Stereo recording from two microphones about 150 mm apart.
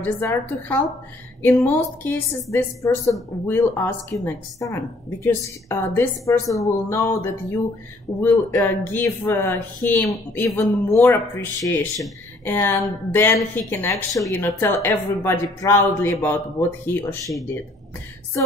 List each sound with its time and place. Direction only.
0.0 s a woman's voice: 15° left (ahead or behind)